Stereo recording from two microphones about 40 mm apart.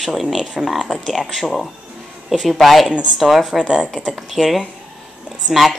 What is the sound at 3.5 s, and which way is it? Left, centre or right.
Speech, right.